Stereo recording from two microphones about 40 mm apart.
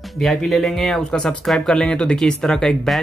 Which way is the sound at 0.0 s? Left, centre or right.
Centre.